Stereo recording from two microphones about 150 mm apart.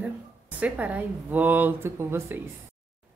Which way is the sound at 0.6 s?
10° right (ahead or behind).